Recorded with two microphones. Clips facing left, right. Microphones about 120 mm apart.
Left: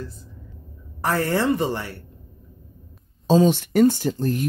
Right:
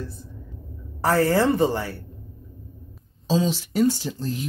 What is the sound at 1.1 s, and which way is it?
Speech, 35° right (ahead or behind).